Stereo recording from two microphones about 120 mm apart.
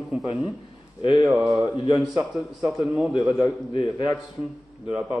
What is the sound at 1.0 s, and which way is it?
A man's voice, 40° left (ahead or behind).